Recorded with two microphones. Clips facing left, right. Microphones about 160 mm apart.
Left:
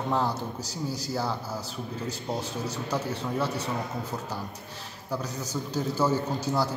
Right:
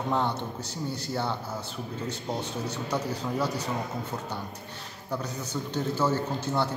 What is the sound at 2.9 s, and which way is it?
Speech, centre (ahead or behind).